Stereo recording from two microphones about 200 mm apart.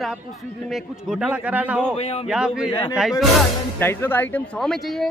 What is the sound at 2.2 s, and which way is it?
Music, 5° right (ahead or behind).